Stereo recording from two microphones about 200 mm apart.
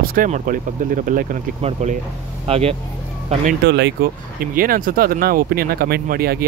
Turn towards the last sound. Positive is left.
turn(degrees=-50)  # may be behind; listen again after turning